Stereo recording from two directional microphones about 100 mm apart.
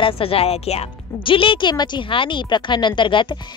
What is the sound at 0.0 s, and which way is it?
A woman's voice, 70° left (ahead or behind).